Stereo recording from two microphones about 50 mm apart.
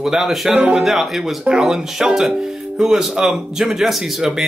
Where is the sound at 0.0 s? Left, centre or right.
Centre.